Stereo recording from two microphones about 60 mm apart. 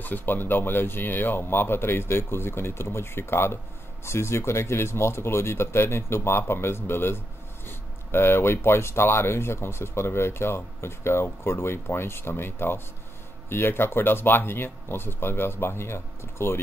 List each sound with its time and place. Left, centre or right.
0.0 s speech: left